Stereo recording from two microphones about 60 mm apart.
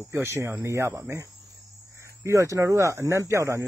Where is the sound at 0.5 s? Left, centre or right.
Right.